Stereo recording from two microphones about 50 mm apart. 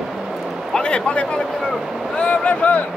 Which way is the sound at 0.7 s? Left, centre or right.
Left.